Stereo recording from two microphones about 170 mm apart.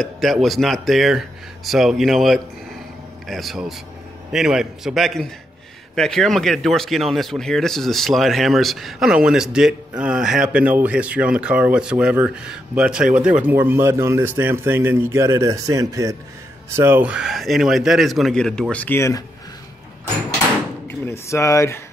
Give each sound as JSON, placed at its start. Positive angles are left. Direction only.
{"t": 0.0, "sound": "speech", "side_deg": 0}
{"t": 20.8, "sound": "speech", "side_deg": 15}